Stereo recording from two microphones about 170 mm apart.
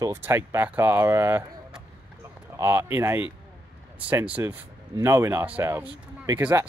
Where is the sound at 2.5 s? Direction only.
15° right (ahead or behind).